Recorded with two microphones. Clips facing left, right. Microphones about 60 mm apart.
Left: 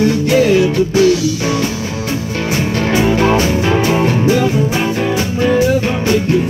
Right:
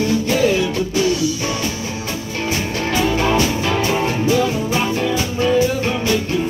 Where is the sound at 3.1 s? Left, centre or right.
Left.